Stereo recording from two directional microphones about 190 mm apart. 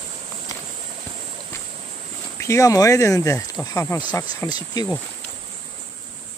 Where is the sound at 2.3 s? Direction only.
15° left (ahead or behind).